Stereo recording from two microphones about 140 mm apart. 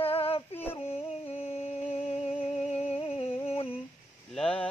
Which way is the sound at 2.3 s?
45° left (ahead or behind).